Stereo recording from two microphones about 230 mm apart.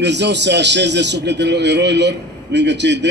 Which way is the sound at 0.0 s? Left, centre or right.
Right.